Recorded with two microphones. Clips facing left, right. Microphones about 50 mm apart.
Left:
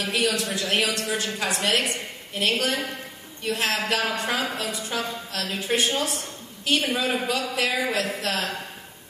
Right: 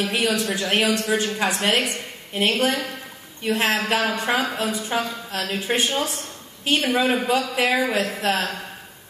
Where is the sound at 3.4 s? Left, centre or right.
Right.